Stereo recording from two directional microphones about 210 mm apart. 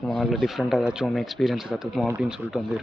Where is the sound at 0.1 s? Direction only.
Centre (ahead or behind).